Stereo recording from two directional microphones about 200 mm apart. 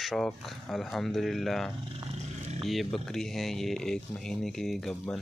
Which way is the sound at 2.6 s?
Centre (ahead or behind).